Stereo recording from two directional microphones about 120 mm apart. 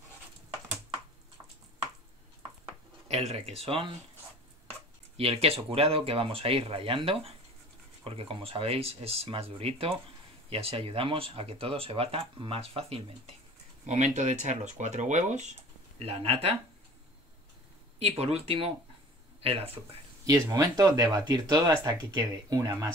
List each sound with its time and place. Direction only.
3.1 s speech: 60° right (ahead or behind)
5.1 s speech: 55° right (ahead or behind)
13.8 s speech: 80° right
16.0 s speech: 55° right (ahead or behind)
17.9 s speech: 60° right (ahead or behind)
20.2 s speech: 25° right (ahead or behind)